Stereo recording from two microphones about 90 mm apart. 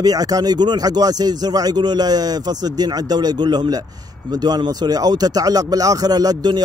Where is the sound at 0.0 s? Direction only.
45° right (ahead or behind).